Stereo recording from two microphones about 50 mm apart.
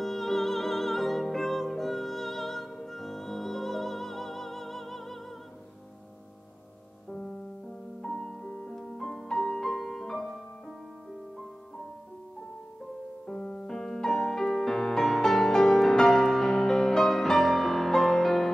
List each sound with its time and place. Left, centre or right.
0.0 s music: centre
8.0 s music: centre
13.3 s music: centre